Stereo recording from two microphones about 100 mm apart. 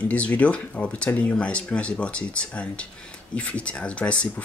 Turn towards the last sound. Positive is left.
turn(degrees=10)  # may be behind; listen again after turning